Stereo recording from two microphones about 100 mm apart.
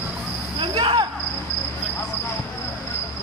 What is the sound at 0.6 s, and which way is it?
Cricket, 60° right (ahead or behind).